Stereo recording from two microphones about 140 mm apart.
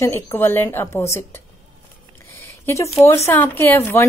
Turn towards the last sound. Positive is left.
turn(degrees=15)  # may be behind; listen again after turning